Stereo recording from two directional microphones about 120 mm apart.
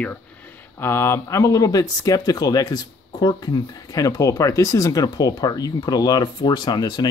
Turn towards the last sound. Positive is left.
turn(degrees=35)  # may be behind; listen again after turning